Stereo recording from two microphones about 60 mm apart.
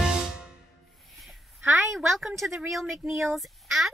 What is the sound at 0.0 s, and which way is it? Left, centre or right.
Music, centre.